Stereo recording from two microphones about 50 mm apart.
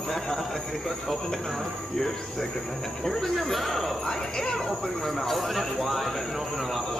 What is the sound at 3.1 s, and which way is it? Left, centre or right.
Speech, centre.